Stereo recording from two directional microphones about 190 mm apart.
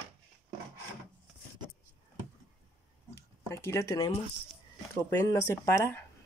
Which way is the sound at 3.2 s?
15° left (ahead or behind).